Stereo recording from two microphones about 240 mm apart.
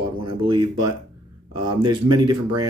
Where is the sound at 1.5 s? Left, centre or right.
Centre.